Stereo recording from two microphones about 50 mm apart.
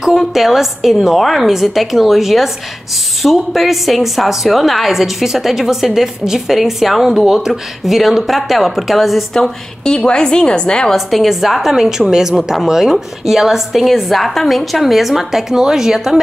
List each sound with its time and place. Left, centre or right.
0.0 s a woman's voice: centre
9.3 s a woman's voice: centre
10.9 s a woman's voice: centre